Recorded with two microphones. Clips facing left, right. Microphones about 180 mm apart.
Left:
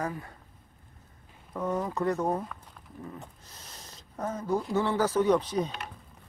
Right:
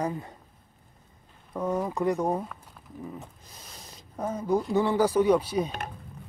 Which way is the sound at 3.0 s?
Centre (ahead or behind).